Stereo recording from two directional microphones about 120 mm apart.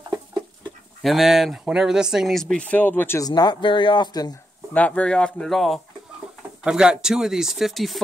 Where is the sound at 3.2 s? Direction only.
35° left (ahead or behind).